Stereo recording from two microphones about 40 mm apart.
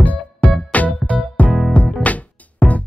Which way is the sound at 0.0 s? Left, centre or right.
Left.